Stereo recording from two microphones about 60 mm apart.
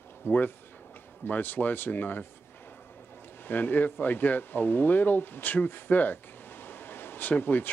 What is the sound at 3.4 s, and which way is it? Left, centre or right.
Speech, left.